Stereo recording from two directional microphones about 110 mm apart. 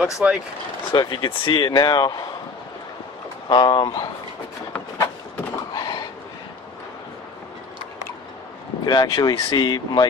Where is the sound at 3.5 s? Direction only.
45° left (ahead or behind).